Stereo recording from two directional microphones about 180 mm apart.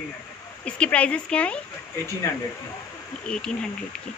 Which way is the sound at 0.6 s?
5° left (ahead or behind).